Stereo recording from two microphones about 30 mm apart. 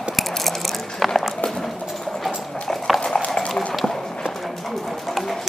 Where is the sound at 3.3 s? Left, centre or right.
Left.